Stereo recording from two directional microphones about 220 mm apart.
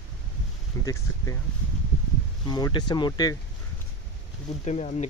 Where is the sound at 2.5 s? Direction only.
20° left (ahead or behind).